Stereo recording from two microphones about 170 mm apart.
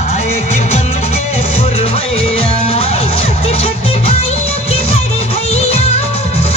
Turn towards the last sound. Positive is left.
turn(degrees=35)  # may be behind; listen again after turning